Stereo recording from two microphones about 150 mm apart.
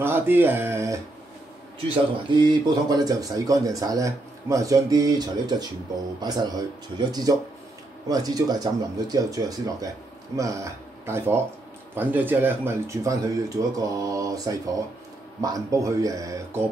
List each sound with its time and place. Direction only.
0.0 s speech: 15° right (ahead or behind)
2.3 s speech: 30° right (ahead or behind)